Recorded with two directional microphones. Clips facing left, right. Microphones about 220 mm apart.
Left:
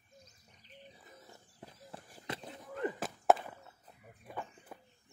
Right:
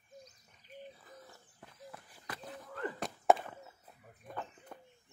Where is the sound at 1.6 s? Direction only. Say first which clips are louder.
Left 1 dB; 30° left (ahead or behind).